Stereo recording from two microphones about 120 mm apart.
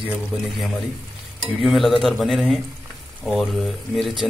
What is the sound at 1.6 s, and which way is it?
Speech, centre (ahead or behind).